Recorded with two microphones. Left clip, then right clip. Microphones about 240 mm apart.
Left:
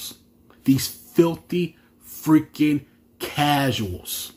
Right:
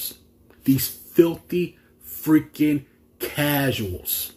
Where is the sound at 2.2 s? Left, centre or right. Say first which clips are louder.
Left 1 dB; centre.